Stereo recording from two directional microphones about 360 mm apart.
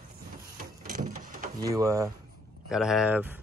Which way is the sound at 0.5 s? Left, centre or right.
Right.